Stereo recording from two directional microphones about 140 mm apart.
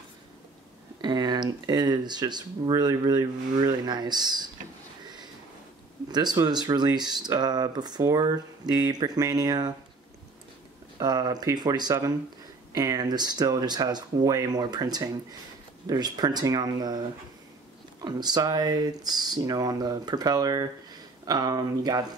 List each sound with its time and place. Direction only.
1.0 s speech: 30° right (ahead or behind)
5.0 s a sound: 30° right (ahead or behind)
6.0 s speech: 30° right (ahead or behind)
11.0 s speech: 30° right (ahead or behind)
18.0 s speech: 30° right (ahead or behind)